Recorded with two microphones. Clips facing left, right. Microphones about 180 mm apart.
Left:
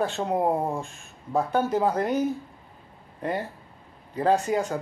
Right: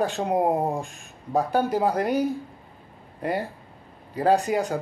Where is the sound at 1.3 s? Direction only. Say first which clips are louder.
Right 1 dB; 35° right (ahead or behind).